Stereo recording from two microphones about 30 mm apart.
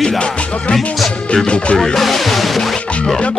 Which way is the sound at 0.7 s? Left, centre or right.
Centre.